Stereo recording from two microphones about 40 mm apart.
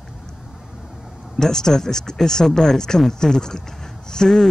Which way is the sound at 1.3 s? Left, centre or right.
Centre.